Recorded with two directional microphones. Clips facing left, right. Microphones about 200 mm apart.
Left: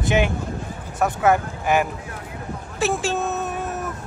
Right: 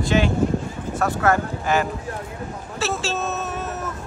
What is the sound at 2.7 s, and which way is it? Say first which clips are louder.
Cat: left 3 dB; 15° left (ahead or behind).